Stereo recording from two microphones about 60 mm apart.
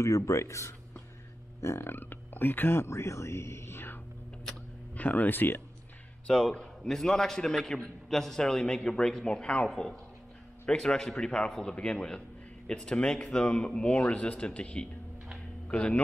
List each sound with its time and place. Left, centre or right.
0.0 s speech: left
4.9 s speech: left
6.5 s a man's voice: centre